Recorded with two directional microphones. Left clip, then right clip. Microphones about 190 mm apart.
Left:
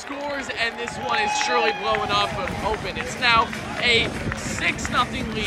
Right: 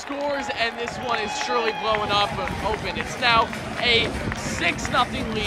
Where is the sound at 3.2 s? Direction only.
10° right (ahead or behind).